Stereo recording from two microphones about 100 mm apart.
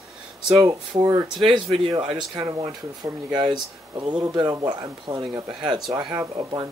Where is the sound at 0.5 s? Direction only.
35° right (ahead or behind).